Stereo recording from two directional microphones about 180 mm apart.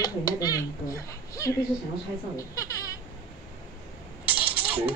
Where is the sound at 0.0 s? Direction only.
20° left (ahead or behind).